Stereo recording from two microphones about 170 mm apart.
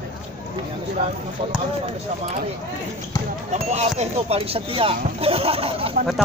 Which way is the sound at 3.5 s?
40° right (ahead or behind).